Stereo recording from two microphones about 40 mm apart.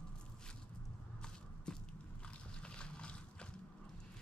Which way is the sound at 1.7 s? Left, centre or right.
Left.